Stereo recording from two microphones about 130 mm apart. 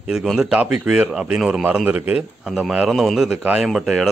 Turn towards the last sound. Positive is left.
turn(degrees=-5)  # may be behind; listen again after turning